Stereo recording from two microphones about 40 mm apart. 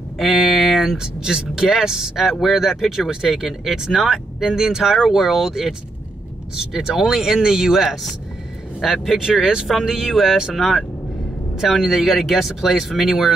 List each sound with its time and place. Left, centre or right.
0.2 s speech: centre
0.9 s speech: centre